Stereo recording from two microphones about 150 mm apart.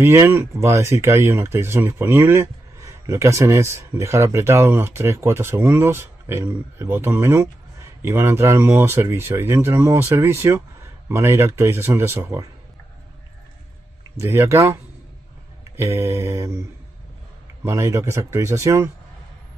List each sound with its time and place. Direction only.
0.0 s speech: 15° right (ahead or behind)
14.1 s speech: 15° right (ahead or behind)
17.6 s speech: 20° right (ahead or behind)